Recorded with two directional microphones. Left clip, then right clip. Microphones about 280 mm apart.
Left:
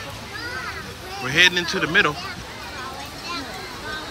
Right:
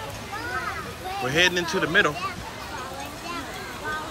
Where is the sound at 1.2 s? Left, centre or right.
Centre.